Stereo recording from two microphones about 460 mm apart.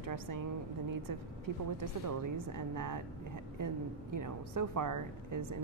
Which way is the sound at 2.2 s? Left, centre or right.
Right.